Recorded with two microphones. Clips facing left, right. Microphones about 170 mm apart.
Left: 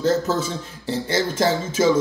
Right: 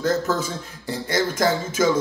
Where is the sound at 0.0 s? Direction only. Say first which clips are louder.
Left 2 dB; 25° left (ahead or behind).